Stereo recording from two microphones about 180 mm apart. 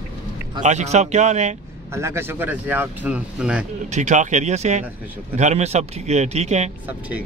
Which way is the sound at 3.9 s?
40° right (ahead or behind).